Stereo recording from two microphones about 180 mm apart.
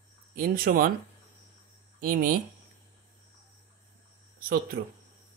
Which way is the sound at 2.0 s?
50° right (ahead or behind).